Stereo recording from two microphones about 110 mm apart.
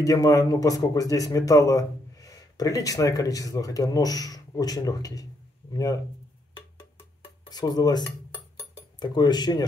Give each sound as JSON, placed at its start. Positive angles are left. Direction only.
{"t": 0.0, "sound": "speech", "side_deg": 30}
{"t": 7.4, "sound": "cutlery", "side_deg": 40}
{"t": 9.0, "sound": "speech", "side_deg": 40}